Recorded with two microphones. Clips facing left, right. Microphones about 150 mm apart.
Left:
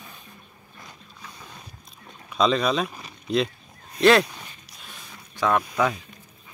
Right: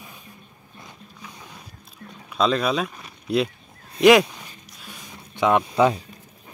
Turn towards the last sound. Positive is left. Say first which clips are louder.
# right 4 dB
turn(degrees=-25)  # may be behind; listen again after turning